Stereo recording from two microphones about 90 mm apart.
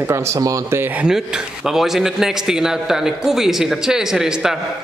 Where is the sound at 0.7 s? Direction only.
25° right (ahead or behind).